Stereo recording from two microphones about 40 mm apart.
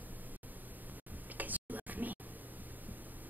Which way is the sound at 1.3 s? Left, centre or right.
Right.